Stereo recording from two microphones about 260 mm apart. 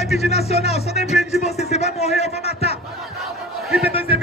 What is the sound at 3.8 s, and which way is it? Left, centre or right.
Speech, left.